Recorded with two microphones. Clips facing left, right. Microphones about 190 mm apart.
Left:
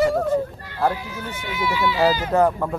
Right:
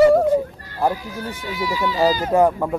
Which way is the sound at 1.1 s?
40° right (ahead or behind).